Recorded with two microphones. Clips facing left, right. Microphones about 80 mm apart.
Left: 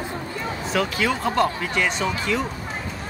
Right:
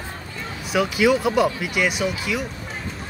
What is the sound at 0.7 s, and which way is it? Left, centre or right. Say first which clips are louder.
Speech: right 5 dB; centre.